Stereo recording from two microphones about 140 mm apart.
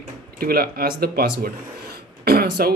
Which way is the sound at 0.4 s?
90° right.